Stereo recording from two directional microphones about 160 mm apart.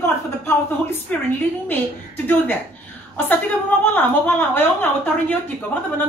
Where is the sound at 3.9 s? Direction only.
10° left (ahead or behind).